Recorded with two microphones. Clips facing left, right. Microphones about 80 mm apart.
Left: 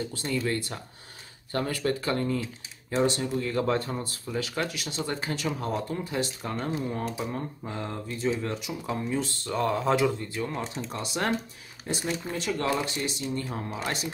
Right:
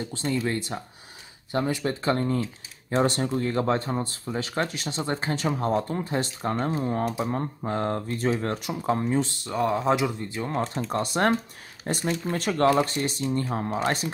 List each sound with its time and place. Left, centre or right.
0.1 s speech: right
9.4 s speech: centre
10.6 s speech: right